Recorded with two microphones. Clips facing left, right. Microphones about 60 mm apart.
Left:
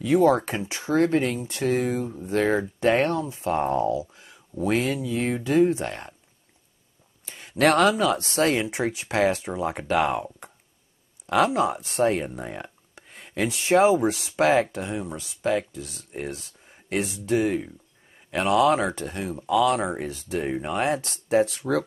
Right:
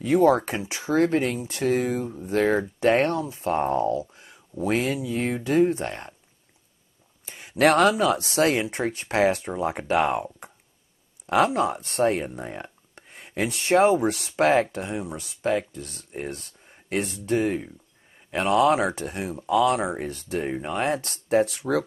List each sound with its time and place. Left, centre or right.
0.0 s speech: centre
7.2 s speech: centre